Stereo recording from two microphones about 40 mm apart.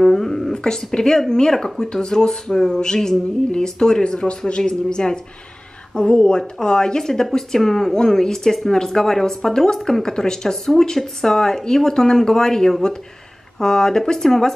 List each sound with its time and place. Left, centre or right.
0.0 s a woman's voice: centre